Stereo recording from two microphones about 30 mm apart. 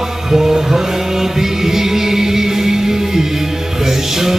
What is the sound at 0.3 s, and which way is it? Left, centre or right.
Music, centre.